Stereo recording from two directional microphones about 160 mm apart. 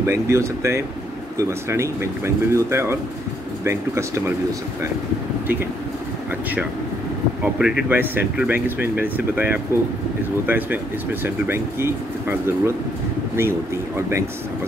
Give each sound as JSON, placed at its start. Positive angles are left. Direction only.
{"t": 0.0, "sound": "speech", "side_deg": -15}
{"t": 7.4, "sound": "speech", "side_deg": -5}